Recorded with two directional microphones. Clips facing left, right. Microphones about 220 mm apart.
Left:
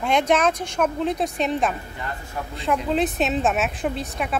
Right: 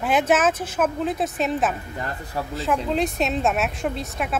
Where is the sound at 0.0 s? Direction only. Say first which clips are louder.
Even; 5° right (ahead or behind).